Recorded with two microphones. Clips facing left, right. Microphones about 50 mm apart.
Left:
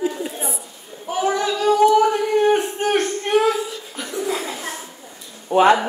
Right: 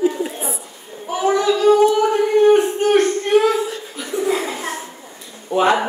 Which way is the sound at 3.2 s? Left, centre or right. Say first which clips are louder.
Left 1 dB; centre.